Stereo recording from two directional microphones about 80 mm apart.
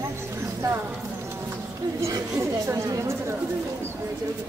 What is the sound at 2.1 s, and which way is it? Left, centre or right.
Chatter, right.